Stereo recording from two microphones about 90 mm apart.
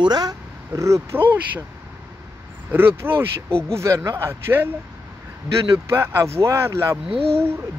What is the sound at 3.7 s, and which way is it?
Speech, 35° right (ahead or behind).